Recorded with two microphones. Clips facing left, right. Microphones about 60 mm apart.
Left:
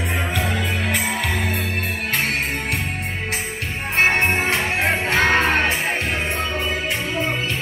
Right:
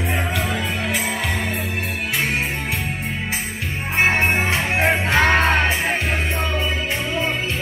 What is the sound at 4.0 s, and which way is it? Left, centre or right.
Music, centre.